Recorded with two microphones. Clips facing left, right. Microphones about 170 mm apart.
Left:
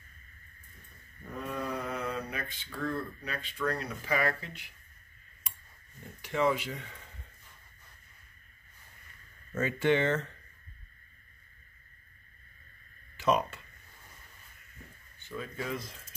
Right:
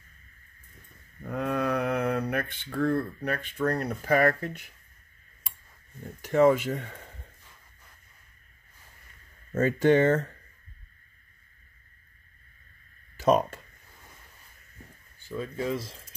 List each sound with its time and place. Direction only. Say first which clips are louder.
1.3 s speech: right 8 dB; 85° right; by 4.6 s 50° right (ahead or behind)
6.2 s speech: right 8 dB; 45° right (ahead or behind)
9.5 s speech: right 6 dB; 40° right (ahead or behind)
13.2 s speech: right 5 dB; 45° right (ahead or behind)
15.2 s speech: right 6 dB; 30° right (ahead or behind)